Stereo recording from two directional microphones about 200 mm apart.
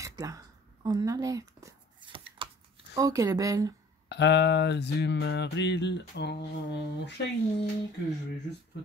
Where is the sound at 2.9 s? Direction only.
15° right (ahead or behind).